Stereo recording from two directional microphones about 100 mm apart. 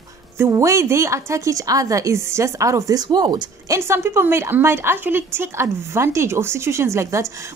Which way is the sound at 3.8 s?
25° right (ahead or behind).